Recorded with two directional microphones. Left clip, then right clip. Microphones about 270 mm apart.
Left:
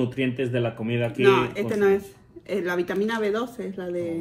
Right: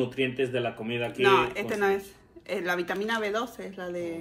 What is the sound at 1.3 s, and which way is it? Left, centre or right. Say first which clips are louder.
Speech: left 1 dB; centre.